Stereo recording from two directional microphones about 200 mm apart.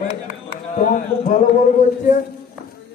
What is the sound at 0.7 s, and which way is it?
Speech, 40° left (ahead or behind).